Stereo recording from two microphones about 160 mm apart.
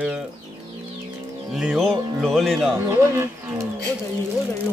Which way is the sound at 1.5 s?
Centre (ahead or behind).